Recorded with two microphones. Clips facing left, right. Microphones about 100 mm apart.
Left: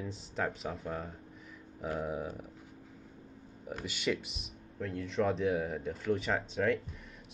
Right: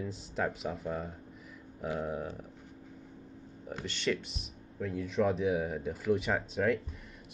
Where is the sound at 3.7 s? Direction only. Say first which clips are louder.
Right 1 dB; 5° left (ahead or behind).